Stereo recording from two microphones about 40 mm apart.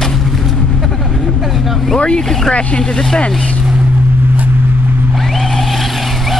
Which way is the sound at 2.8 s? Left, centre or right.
Centre.